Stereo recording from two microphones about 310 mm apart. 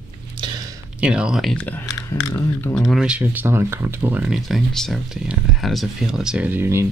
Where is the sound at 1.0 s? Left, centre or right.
Centre.